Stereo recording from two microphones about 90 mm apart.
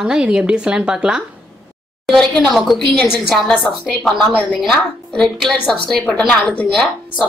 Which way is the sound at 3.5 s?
15° left (ahead or behind).